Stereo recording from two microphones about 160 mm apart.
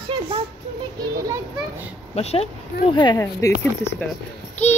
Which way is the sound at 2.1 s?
40° left (ahead or behind).